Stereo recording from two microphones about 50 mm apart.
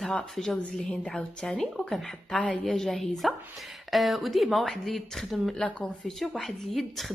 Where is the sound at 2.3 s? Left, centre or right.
Left.